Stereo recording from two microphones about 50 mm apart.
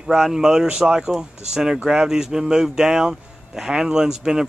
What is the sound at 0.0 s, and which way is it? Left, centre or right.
Speech, centre.